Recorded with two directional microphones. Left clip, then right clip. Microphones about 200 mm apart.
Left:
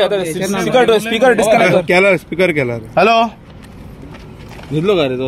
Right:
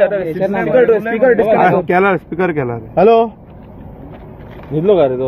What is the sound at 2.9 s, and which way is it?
Speech, 60° left (ahead or behind).